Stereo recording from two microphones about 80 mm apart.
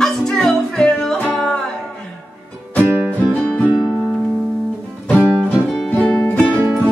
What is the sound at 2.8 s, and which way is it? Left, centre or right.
Music, right.